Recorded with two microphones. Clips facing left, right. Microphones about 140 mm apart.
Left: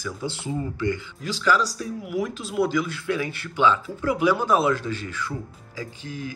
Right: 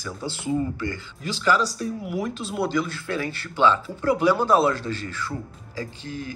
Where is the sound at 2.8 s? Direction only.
15° left (ahead or behind).